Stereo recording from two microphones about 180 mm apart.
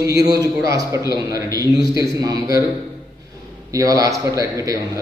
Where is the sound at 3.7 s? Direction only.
20° right (ahead or behind).